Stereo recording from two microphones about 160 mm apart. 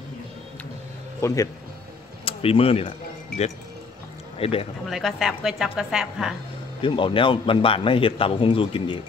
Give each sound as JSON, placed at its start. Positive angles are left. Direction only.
{"t": 1.2, "sound": "speech", "side_deg": 20}
{"t": 2.2, "sound": "speech", "side_deg": 35}
{"t": 4.4, "sound": "speech", "side_deg": 35}
{"t": 4.8, "sound": "a woman's voice", "side_deg": 0}
{"t": 6.8, "sound": "a man's voice", "side_deg": 30}